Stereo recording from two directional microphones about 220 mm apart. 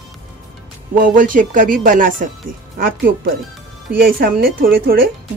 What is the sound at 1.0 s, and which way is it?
Speech, 40° right (ahead or behind).